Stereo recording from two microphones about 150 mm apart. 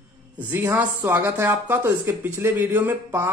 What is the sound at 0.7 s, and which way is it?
Speech, 15° right (ahead or behind).